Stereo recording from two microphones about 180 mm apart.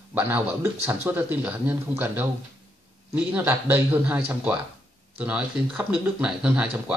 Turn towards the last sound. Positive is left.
turn(degrees=-5)  # may be behind; listen again after turning